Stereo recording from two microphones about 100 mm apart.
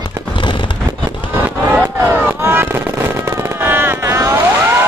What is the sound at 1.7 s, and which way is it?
Fireworks, 15° right (ahead or behind).